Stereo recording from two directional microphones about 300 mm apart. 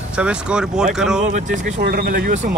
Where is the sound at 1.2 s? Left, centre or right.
Right.